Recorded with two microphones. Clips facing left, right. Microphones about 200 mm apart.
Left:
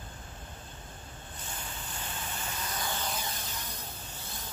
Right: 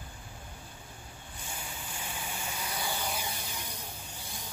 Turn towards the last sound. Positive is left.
turn(degrees=-15)  # may be behind; listen again after turning